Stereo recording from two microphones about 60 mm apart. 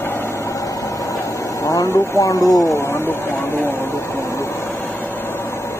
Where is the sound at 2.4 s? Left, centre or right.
Left.